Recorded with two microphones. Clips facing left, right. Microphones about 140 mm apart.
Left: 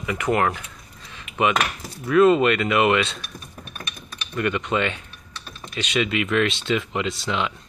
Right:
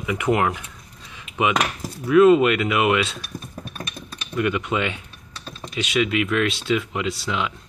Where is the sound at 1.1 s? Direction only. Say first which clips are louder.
Left 1 dB; 10° right (ahead or behind).